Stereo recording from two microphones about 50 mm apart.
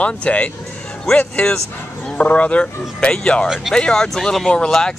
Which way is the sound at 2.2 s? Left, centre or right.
Left.